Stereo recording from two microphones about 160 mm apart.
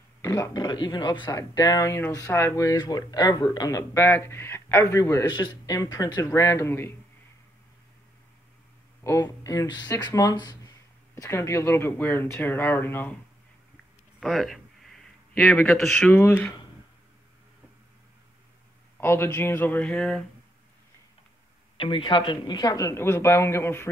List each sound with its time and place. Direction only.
0.2 s speech: 20° left (ahead or behind)
9.0 s speech: 20° left (ahead or behind)
14.2 s a sound: centre (ahead or behind)
15.8 s speech: centre (ahead or behind)
16.1 s speech: 10° left (ahead or behind)
18.9 s speech: 15° left (ahead or behind)
21.7 s speech: 35° left (ahead or behind); by 23.9 s 15° left (ahead or behind)